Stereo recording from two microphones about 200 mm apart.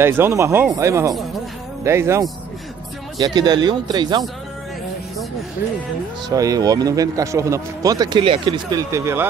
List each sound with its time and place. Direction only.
0.0 s a man's voice: 10° right (ahead or behind)
6.2 s speech: 15° right (ahead or behind)